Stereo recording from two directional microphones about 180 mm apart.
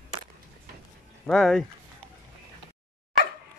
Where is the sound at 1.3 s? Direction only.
Centre (ahead or behind).